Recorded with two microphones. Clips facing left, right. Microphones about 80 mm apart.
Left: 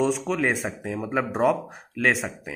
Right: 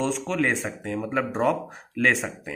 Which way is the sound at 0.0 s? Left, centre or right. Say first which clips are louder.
Left 2 dB; centre.